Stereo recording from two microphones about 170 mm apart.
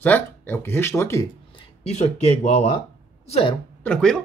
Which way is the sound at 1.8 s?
40° left (ahead or behind).